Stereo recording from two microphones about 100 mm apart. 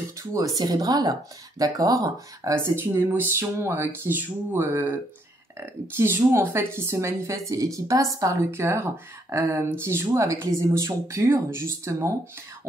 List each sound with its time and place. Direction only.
0.2 s a woman's voice: 35° right (ahead or behind)